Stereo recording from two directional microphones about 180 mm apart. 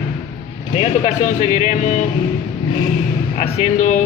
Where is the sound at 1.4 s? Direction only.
40° left (ahead or behind).